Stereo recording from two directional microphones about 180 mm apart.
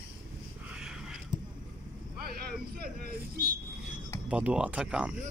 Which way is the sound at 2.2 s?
55° right (ahead or behind).